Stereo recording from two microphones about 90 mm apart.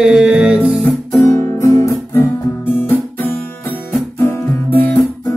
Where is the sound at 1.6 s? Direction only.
35° left (ahead or behind).